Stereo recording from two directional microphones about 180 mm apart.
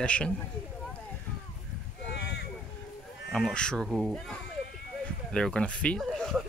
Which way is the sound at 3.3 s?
Centre (ahead or behind).